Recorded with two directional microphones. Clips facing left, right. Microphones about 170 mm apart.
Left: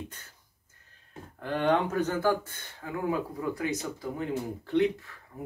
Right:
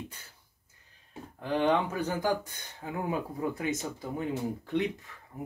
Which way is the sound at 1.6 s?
10° right (ahead or behind).